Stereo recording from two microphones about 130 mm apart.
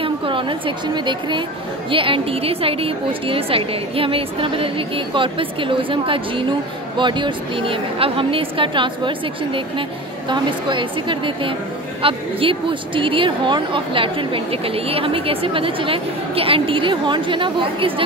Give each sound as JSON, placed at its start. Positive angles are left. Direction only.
{"t": 0.0, "sound": "a woman's voice", "side_deg": -40}